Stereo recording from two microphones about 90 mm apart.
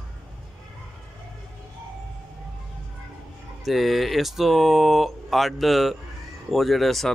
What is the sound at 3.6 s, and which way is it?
Speech, centre (ahead or behind).